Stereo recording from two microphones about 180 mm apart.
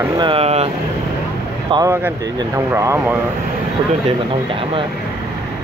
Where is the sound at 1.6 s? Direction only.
25° right (ahead or behind).